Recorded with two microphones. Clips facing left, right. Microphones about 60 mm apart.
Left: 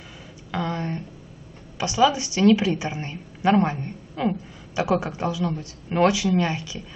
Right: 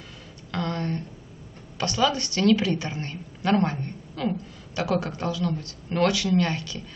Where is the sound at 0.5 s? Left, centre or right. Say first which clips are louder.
Left 1 dB; centre.